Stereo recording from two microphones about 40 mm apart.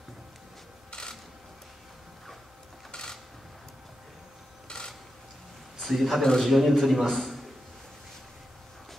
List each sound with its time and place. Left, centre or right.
2.9 s a sound: centre
4.6 s mechanisms: centre
5.8 s a man's voice: centre